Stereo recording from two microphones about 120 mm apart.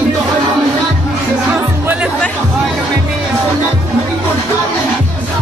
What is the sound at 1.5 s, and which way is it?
Music, 15° right (ahead or behind).